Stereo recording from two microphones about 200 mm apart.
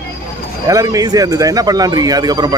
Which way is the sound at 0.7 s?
15° right (ahead or behind).